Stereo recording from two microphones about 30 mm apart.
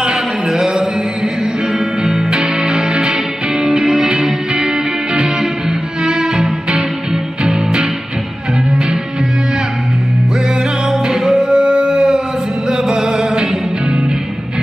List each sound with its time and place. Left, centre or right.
0.0 s a sound: right
2.0 s music: right
6.0 s music: right
10.9 s music: right